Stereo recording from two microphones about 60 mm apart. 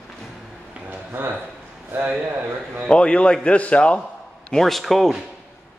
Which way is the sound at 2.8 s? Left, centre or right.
Centre.